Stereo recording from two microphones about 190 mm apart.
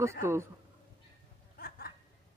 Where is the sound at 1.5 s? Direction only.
50° left (ahead or behind).